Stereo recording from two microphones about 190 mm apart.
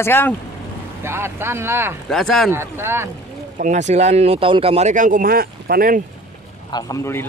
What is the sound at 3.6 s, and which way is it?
Speech, 40° right (ahead or behind).